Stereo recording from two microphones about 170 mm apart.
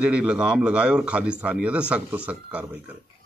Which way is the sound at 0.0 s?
5° right (ahead or behind).